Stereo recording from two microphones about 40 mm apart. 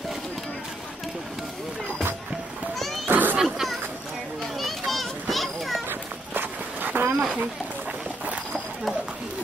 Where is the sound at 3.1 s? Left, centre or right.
Right.